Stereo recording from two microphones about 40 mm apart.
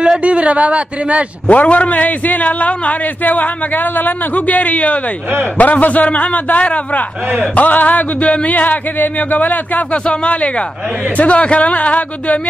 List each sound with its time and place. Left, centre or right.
0.2 s speech: right
1.5 s a man's voice: left
10.0 s a man's voice: left